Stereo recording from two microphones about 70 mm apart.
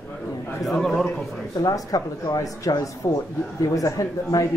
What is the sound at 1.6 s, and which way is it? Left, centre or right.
Speech, left.